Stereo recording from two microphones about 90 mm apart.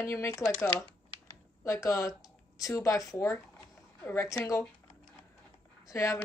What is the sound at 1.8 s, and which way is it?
A man's voice, 40° left (ahead or behind).